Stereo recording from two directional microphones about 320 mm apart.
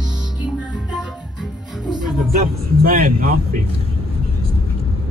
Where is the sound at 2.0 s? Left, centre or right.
Right.